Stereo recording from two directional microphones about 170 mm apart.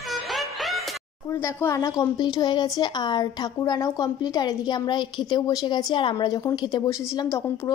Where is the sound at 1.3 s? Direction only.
15° left (ahead or behind).